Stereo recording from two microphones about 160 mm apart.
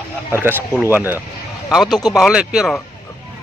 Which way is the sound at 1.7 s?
Centre (ahead or behind).